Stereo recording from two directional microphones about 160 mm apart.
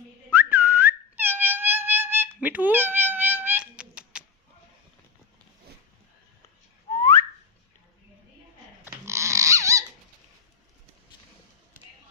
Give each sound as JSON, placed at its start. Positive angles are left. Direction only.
{"t": 0.3, "sound": "whistling", "side_deg": -10}
{"t": 7.0, "sound": "whistling", "side_deg": 20}
{"t": 8.8, "sound": "dog", "side_deg": -15}